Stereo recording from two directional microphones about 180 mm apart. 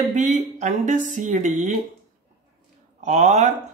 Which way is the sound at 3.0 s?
40° right (ahead or behind).